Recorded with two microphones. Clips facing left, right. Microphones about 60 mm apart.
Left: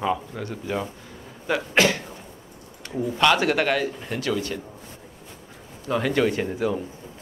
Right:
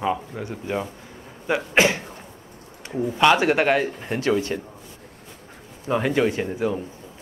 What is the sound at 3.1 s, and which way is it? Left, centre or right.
A man's voice, right.